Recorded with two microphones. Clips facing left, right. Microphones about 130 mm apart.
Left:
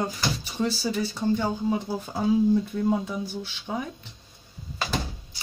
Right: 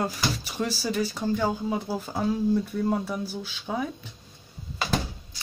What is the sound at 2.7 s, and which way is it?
Speech, 5° right (ahead or behind).